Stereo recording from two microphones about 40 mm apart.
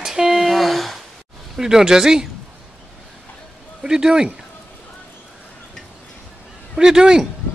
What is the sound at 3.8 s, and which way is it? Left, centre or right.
Speech, centre.